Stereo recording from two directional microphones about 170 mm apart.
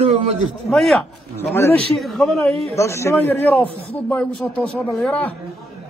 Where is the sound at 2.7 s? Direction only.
15° left (ahead or behind).